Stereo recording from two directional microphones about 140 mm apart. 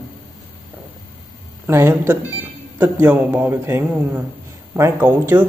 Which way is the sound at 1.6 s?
15° right (ahead or behind).